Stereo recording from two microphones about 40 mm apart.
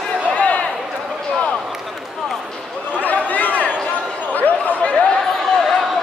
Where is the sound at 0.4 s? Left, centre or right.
Left.